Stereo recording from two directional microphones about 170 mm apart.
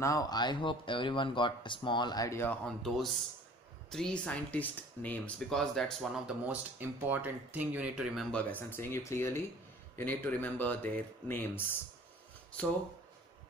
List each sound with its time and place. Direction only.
0.0 s speech: 20° left (ahead or behind)
2.6 s speech: centre (ahead or behind)